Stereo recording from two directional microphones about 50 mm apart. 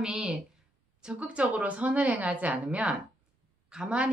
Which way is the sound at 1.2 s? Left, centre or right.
Right.